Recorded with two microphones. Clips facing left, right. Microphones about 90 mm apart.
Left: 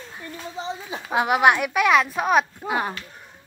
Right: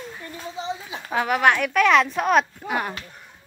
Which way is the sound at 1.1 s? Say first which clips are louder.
Left 2 dB; 15° left (ahead or behind).